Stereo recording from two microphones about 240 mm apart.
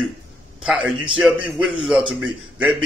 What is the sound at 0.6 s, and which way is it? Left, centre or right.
Speech, centre.